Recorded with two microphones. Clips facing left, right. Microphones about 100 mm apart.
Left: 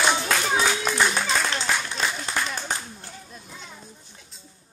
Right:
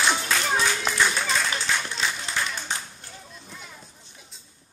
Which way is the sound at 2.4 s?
50° left (ahead or behind).